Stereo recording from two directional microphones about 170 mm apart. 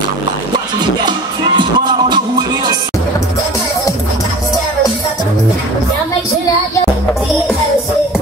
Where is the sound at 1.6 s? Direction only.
25° right (ahead or behind).